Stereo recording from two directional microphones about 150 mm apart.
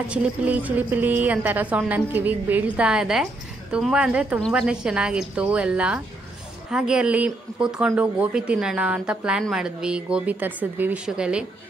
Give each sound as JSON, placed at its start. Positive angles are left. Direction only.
{"t": 0.1, "sound": "a woman's voice", "side_deg": -10}